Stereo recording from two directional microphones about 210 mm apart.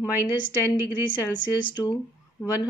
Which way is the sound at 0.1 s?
10° right (ahead or behind).